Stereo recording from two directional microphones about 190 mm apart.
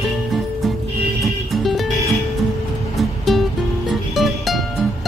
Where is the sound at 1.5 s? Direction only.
Centre (ahead or behind).